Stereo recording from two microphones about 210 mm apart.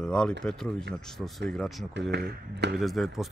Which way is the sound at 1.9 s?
55° right (ahead or behind).